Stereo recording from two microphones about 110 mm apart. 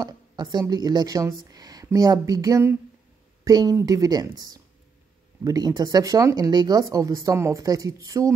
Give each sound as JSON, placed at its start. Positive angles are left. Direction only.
{"t": 0.0, "sound": "speech", "side_deg": -40}